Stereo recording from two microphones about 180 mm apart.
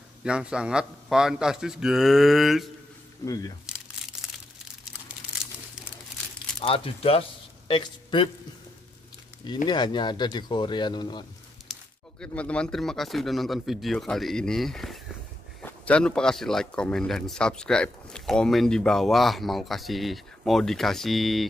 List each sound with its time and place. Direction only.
0.2 s speech: 5° right (ahead or behind)
3.2 s speech: 15° left (ahead or behind)
4.1 s crumpling: 5° right (ahead or behind)
6.6 s speech: 30° left (ahead or behind)
9.7 s speech: 25° left (ahead or behind)
12.2 s speech: 5° left (ahead or behind)